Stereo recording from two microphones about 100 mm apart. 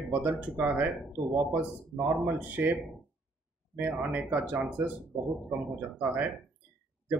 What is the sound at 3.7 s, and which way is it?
Speech, 15° right (ahead or behind).